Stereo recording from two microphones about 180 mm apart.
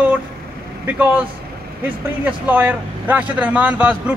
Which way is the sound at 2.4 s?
10° right (ahead or behind).